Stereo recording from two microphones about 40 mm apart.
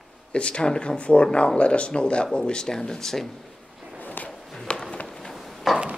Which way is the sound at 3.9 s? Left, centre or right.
Left.